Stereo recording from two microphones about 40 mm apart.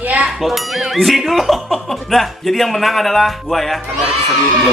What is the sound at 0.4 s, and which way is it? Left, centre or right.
Speech, centre.